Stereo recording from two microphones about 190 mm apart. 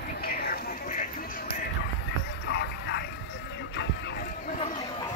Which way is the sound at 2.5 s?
65° left (ahead or behind).